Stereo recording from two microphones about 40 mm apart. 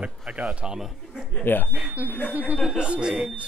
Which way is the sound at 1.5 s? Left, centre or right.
Left.